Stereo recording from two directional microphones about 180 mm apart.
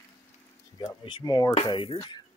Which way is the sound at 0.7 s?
25° left (ahead or behind).